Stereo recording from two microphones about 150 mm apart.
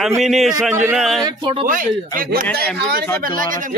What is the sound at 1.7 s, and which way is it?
Speech, 65° right (ahead or behind).